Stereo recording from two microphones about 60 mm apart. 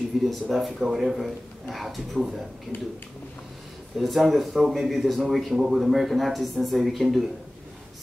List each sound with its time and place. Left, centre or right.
0.2 s speech: centre
2.7 s speech: left
3.9 s speech: centre